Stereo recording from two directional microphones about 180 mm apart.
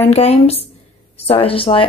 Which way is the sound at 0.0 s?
35° left (ahead or behind).